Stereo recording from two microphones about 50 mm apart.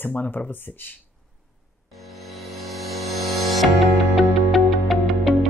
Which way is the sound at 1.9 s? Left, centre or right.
Centre.